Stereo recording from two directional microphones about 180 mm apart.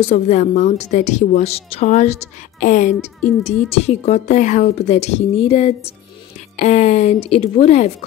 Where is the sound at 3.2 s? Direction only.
Centre (ahead or behind).